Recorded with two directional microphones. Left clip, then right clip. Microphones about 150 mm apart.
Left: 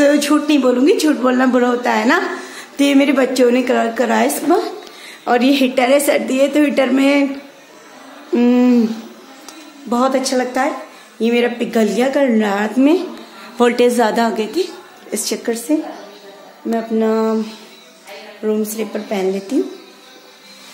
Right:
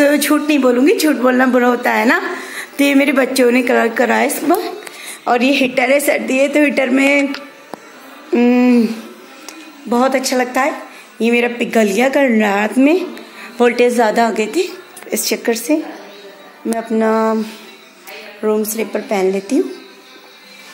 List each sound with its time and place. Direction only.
0.0 s a sound: 25° right (ahead or behind)
0.5 s speech: centre (ahead or behind)
5.2 s a woman's voice: 10° left (ahead or behind)
8.3 s a woman's voice: 5° left (ahead or behind)
11.1 s a woman's voice: 25° right (ahead or behind); by 13.0 s 5° right (ahead or behind)
13.6 s a woman's voice: 30° left (ahead or behind)
14.3 s a woman's voice: 5° right (ahead or behind)
17.0 s speech: 25° right (ahead or behind)
18.4 s a woman's voice: 35° right (ahead or behind)